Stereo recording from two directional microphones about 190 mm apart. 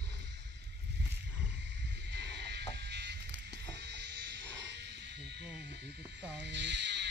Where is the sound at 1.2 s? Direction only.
65° right (ahead or behind).